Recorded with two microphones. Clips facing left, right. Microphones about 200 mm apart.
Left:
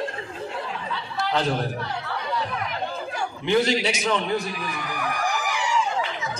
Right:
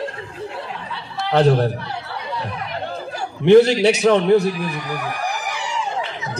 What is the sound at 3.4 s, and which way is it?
A man's voice, 65° right (ahead or behind).